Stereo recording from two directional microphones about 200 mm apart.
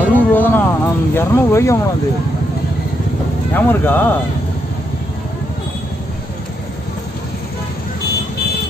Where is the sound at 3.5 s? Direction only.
10° left (ahead or behind).